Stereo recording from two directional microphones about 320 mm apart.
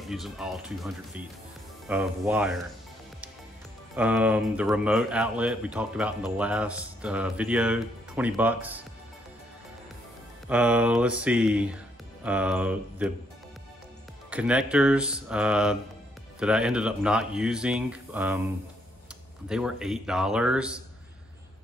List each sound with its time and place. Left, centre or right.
0.1 s speech: centre
3.9 s speech: centre
10.5 s speech: centre
14.3 s speech: centre
19.5 s speech: centre